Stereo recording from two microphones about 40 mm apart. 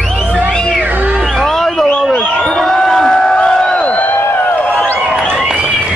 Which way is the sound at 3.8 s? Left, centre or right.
Left.